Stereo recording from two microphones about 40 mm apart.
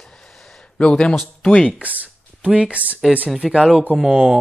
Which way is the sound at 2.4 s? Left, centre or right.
Right.